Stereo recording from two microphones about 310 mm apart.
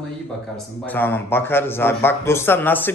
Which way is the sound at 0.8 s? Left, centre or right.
Centre.